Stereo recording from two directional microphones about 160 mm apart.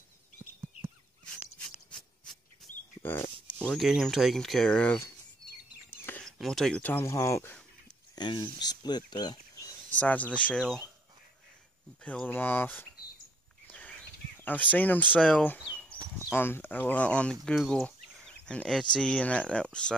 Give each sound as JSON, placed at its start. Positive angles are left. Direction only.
{"t": 3.0, "sound": "a sound", "side_deg": 15}
{"t": 3.5, "sound": "speech", "side_deg": 0}
{"t": 5.9, "sound": "whispering", "side_deg": 10}
{"t": 6.3, "sound": "speech", "side_deg": 0}
{"t": 9.9, "sound": "speech", "side_deg": 10}
{"t": 12.0, "sound": "speech", "side_deg": 10}
{"t": 13.7, "sound": "a sound", "side_deg": 10}
{"t": 16.3, "sound": "speech", "side_deg": 15}